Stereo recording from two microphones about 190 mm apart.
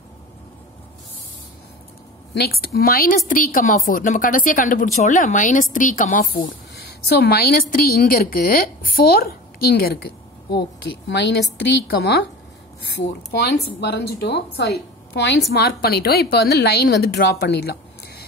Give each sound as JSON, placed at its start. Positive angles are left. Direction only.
{"t": 2.3, "sound": "a woman's voice", "side_deg": 55}
{"t": 7.1, "sound": "a woman's voice", "side_deg": 55}
{"t": 13.4, "sound": "a woman's voice", "side_deg": 60}